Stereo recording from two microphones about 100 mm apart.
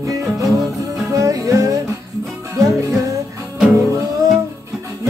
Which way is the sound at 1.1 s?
35° right (ahead or behind).